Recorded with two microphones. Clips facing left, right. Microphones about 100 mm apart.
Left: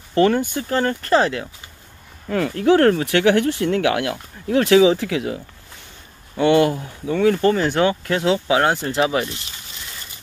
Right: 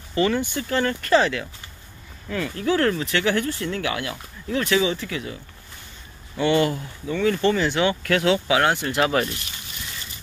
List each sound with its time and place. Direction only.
0.1 s speech: 55° left (ahead or behind); by 1.4 s 35° left (ahead or behind)
2.2 s speech: 55° left (ahead or behind); by 5.4 s 85° left
6.3 s speech: 50° left (ahead or behind)
7.9 s speech: 25° left (ahead or behind)